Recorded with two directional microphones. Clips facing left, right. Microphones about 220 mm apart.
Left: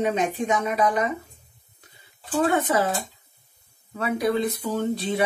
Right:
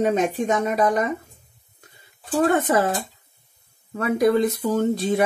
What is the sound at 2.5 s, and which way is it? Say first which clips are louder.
Speech: right 3 dB; 50° right (ahead or behind).